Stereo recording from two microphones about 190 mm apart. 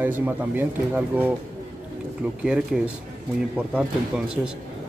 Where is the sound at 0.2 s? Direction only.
10° right (ahead or behind).